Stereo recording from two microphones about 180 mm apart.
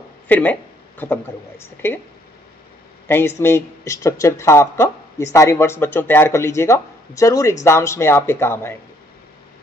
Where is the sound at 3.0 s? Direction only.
15° left (ahead or behind).